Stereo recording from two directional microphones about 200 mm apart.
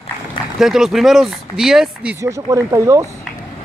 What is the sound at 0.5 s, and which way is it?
Speech, centre (ahead or behind).